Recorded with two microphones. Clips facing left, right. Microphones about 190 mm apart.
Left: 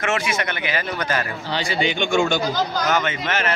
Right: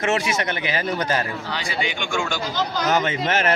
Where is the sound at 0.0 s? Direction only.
35° right (ahead or behind).